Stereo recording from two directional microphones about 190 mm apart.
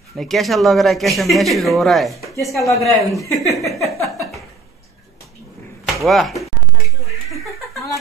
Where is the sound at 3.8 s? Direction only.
15° left (ahead or behind).